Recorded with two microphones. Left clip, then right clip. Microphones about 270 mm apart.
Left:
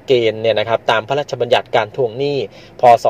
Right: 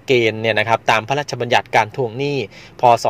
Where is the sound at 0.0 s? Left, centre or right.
Right.